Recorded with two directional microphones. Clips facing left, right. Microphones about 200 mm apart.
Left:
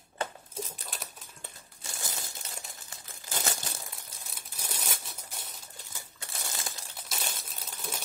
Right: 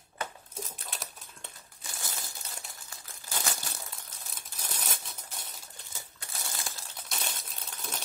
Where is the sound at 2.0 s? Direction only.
20° left (ahead or behind).